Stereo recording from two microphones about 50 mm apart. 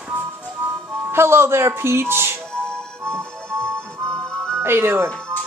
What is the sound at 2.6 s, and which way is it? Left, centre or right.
Music, centre.